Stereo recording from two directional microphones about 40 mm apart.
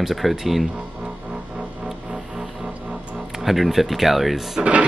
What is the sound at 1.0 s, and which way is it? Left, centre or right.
Music, centre.